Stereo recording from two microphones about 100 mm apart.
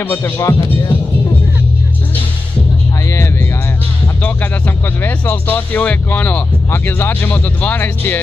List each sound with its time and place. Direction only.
0.0 s speech: 25° left (ahead or behind)
4.2 s speech: 20° left (ahead or behind)